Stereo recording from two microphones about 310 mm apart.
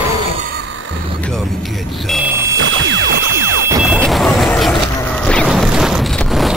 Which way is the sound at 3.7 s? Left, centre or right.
Centre.